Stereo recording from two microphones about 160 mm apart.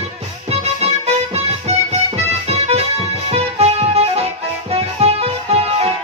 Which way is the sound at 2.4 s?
40° right (ahead or behind).